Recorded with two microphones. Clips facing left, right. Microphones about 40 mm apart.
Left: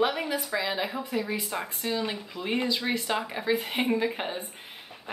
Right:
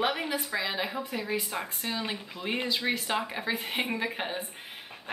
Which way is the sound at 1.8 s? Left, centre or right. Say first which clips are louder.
Left 6 dB; centre.